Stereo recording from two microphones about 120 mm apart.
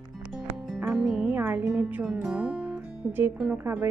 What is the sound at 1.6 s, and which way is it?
Speech, 5° right (ahead or behind).